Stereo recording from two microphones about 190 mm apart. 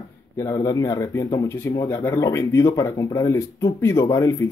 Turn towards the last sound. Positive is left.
turn(degrees=15)  # may be behind; listen again after turning